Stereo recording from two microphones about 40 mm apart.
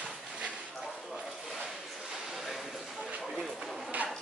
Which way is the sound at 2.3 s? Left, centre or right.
Centre.